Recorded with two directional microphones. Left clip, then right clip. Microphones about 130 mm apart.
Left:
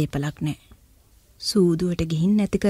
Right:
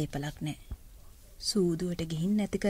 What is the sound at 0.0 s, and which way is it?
Speech, 40° left (ahead or behind).